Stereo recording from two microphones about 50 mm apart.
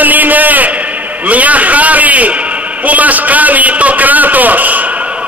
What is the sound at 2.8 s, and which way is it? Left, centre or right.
A man's voice, right.